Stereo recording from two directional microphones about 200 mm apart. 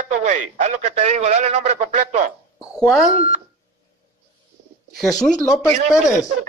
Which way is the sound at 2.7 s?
Centre (ahead or behind).